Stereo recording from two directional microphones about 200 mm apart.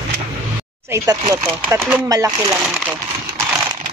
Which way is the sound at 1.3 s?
15° right (ahead or behind).